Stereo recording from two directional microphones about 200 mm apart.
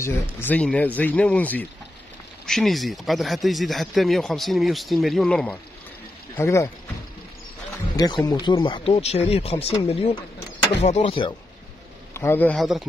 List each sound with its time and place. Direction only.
0.0 s speech: 10° left (ahead or behind)
6.3 s speech: 15° left (ahead or behind)
7.9 s speech: 20° left (ahead or behind)
12.1 s a man's voice: 10° left (ahead or behind)